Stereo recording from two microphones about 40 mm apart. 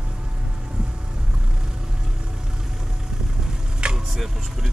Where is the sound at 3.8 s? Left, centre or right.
Right.